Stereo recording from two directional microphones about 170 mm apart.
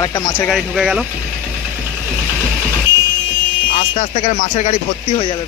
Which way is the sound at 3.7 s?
45° left (ahead or behind).